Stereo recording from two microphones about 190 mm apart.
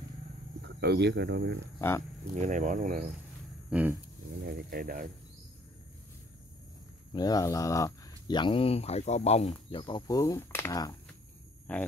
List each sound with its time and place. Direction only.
0.6 s speech: 60° right (ahead or behind)
1.8 s speech: 15° left (ahead or behind)
2.3 s speech: 40° right (ahead or behind)
3.7 s a sound: 5° right (ahead or behind)
4.4 s speech: 55° right (ahead or behind)
7.1 s speech: 20° left (ahead or behind)
11.7 s speech: 10° left (ahead or behind)